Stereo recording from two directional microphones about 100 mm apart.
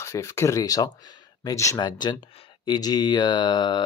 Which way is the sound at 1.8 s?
45° left (ahead or behind).